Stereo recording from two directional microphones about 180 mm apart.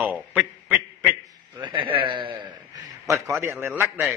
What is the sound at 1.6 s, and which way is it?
A man's voice, 30° right (ahead or behind).